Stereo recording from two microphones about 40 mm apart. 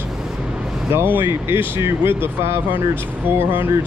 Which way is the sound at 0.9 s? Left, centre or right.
Right.